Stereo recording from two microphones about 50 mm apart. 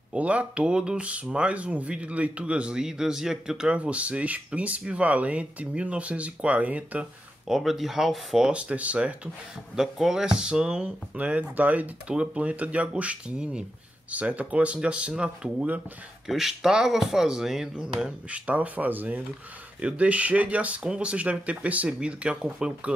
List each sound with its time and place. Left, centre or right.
0.1 s speech: right
3.7 s speech: right
7.4 s speech: centre
8.5 s speech: right
9.8 s speech: centre
11.1 s speech: right
16.3 s speech: centre
17.9 s speech: right